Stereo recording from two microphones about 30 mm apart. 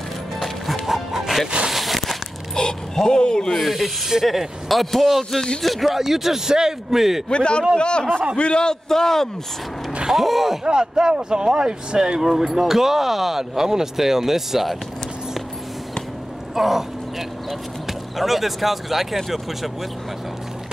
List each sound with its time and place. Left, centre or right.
0.8 s music: centre
1.7 s a sound: centre
2.5 s speech: left
3.5 s speech: centre
5.9 s speech: centre
7.2 s a man's voice: left
8.8 s a man's voice: centre
10.1 s speech: centre
10.6 s speech: right
12.2 s speech: centre
16.5 s speech: centre
18.1 s speech: centre